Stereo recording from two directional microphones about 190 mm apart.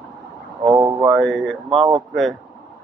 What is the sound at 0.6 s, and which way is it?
Speech, 20° right (ahead or behind).